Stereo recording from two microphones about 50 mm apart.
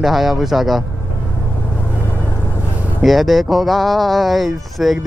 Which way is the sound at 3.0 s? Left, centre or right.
Centre.